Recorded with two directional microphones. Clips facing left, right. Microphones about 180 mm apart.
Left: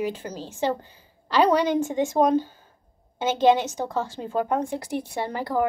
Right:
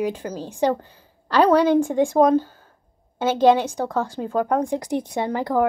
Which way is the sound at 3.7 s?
10° left (ahead or behind).